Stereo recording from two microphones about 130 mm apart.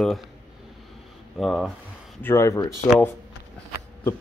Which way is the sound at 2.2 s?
20° left (ahead or behind).